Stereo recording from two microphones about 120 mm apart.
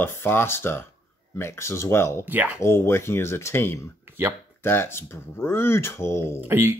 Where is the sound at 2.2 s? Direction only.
15° right (ahead or behind).